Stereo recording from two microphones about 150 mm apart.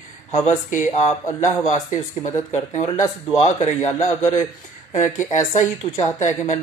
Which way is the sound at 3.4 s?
50° left (ahead or behind).